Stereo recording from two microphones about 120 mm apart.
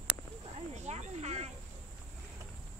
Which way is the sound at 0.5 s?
70° right (ahead or behind).